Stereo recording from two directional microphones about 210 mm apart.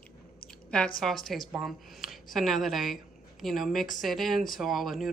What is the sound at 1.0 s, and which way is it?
Speech, centre (ahead or behind).